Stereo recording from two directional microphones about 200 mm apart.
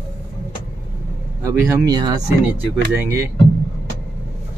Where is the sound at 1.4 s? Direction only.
15° right (ahead or behind).